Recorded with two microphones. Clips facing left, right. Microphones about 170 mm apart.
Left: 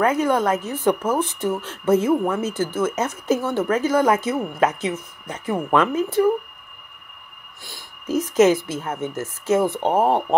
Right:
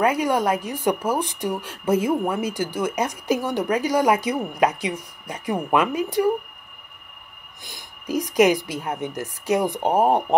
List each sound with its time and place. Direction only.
0.0 s speech: 10° right (ahead or behind)
7.6 s speech: 15° right (ahead or behind)